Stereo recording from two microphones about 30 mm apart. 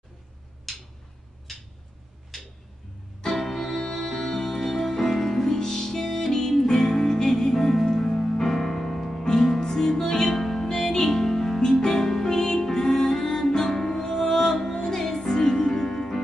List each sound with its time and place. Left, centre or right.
0.7 s a sound: centre
3.3 s music: centre
10.7 s music: centre